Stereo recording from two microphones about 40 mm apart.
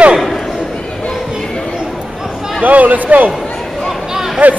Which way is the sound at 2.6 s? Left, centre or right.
Right.